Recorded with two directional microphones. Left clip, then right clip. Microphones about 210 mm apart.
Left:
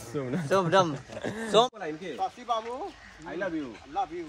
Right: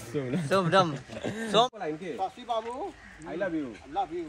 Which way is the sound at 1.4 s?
45° left (ahead or behind).